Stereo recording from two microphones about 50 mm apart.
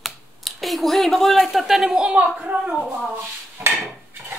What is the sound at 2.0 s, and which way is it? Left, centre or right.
Speech, right.